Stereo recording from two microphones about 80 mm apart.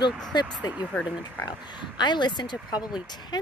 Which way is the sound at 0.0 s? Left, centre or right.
Left.